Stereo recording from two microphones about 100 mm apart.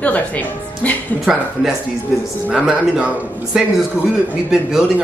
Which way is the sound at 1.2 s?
5° right (ahead or behind).